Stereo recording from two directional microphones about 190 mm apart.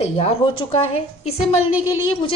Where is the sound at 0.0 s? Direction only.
30° left (ahead or behind).